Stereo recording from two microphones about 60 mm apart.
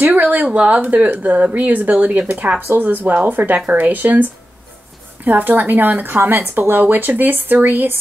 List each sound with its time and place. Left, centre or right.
0.0 s speech: right